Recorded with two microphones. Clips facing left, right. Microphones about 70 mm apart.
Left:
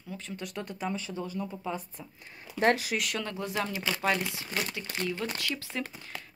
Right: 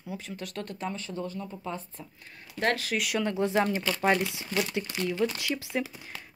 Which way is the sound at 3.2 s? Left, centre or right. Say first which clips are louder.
Right 7 dB; right.